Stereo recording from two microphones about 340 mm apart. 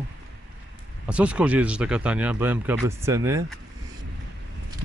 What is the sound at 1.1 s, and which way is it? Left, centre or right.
Speech, centre.